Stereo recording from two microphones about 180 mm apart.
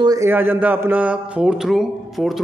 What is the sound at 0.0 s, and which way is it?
A man's voice, 20° right (ahead or behind).